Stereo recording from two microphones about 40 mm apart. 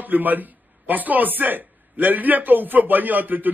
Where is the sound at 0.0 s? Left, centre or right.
Right.